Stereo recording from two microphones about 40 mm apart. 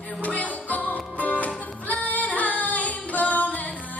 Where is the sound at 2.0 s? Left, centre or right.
Left.